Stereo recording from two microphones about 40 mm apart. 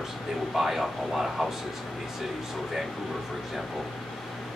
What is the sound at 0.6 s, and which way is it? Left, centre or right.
Speech, centre.